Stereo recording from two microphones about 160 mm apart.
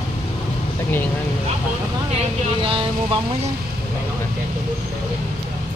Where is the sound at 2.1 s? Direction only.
35° right (ahead or behind).